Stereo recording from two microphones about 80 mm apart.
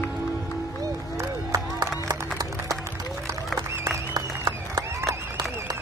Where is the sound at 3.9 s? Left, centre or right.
Right.